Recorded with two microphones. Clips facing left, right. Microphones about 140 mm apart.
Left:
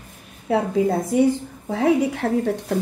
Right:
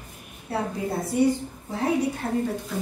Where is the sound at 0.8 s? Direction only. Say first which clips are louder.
Left 3 dB; 90° left.